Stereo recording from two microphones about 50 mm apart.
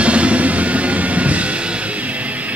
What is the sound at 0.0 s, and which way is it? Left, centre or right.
Music, right.